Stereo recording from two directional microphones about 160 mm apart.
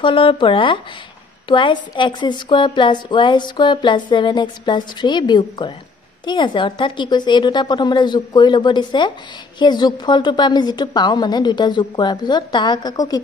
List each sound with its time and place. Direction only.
0.0 s a woman's voice: 30° left (ahead or behind)